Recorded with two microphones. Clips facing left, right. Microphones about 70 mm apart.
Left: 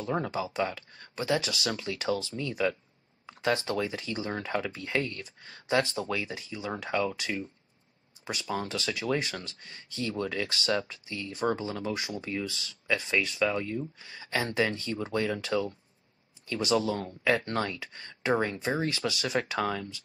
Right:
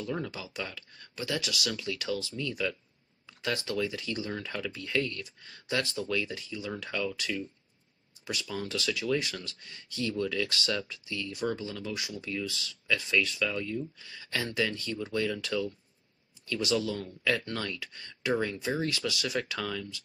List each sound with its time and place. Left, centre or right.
0.0 s speech: left